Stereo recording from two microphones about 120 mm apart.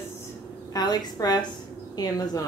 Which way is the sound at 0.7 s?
35° left (ahead or behind).